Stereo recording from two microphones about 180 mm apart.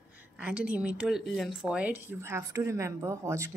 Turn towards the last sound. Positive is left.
turn(degrees=-15)  # may be behind; listen again after turning